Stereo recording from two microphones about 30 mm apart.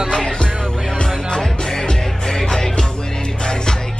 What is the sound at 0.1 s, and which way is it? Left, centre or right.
Music, left.